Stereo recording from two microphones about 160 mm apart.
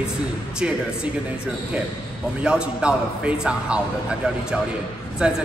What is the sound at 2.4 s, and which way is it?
A man's voice, 5° right (ahead or behind).